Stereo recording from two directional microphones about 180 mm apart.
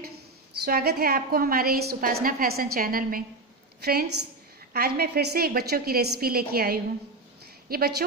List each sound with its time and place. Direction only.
0.7 s a woman's voice: 60° right (ahead or behind)